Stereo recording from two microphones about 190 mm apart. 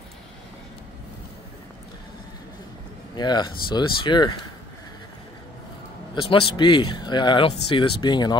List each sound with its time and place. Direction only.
3.2 s speech: 20° left (ahead or behind)
6.2 s speech: 25° left (ahead or behind)